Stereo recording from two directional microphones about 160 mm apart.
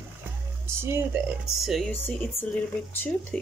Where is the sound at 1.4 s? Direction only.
Centre (ahead or behind).